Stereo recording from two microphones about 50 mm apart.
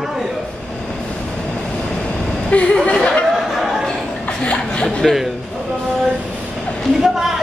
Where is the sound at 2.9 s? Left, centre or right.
Left.